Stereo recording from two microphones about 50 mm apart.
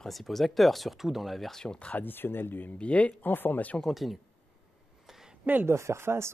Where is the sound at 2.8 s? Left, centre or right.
Left.